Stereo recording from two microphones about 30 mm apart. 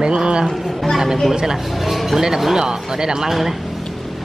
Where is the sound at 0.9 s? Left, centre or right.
Centre.